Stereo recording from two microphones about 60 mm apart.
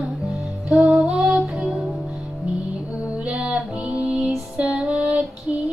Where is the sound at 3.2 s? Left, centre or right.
Right.